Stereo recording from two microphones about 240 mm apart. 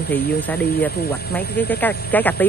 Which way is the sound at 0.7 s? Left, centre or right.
Centre.